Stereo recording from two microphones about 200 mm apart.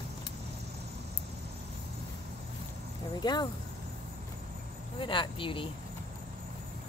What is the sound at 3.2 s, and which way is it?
Speech, 20° left (ahead or behind).